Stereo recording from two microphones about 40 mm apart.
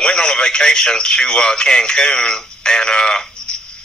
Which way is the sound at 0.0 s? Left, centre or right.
Centre.